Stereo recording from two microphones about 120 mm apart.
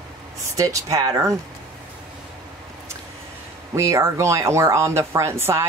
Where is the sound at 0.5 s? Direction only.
30° right (ahead or behind).